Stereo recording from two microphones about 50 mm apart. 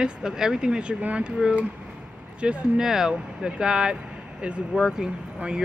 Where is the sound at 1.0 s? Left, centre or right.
Right.